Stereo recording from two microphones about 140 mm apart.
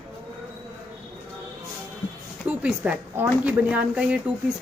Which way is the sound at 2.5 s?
10° right (ahead or behind).